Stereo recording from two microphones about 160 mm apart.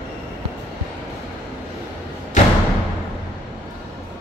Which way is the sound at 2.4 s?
50° left (ahead or behind).